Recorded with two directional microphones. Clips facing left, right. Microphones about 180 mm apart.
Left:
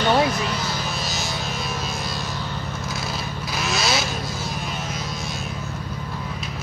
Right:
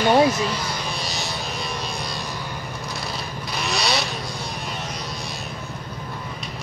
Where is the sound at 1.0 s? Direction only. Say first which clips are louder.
Left 1 dB; centre (ahead or behind).